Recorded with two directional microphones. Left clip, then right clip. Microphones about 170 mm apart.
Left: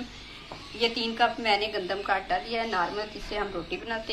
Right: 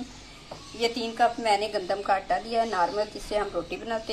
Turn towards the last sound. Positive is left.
turn(degrees=-55)  # may be behind; listen again after turning